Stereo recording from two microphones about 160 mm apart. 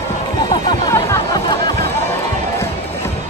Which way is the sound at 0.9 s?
20° left (ahead or behind).